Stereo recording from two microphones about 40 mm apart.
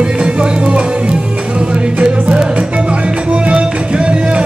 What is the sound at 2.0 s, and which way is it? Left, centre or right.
Music, right.